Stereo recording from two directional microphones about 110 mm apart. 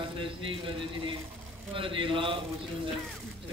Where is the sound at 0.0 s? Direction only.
50° right (ahead or behind).